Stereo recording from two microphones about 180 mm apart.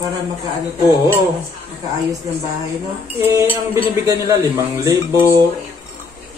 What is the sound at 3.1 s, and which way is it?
Speech, 10° right (ahead or behind).